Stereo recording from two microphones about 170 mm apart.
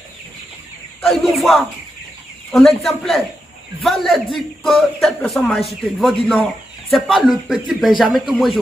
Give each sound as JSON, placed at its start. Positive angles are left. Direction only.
{"t": 1.3, "sound": "speech", "side_deg": 0}